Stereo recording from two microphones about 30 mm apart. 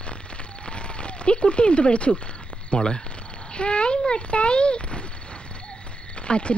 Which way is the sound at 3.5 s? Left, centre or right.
Left.